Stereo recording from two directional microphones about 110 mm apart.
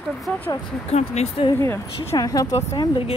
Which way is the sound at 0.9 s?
75° left (ahead or behind).